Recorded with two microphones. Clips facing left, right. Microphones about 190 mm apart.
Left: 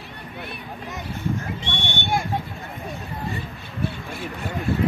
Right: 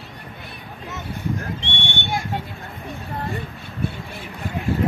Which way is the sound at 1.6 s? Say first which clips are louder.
Even; 55° left (ahead or behind).